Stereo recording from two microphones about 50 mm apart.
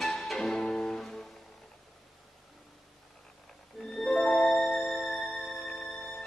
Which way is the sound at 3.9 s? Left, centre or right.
Centre.